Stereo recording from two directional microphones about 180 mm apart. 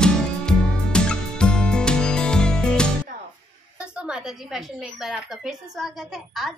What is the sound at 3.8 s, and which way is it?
A woman's voice, 5° right (ahead or behind).